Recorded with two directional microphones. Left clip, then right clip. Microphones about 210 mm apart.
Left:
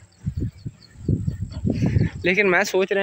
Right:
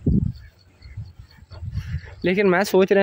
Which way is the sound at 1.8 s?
15° right (ahead or behind).